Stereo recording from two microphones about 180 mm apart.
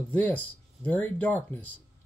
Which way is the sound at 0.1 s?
10° left (ahead or behind).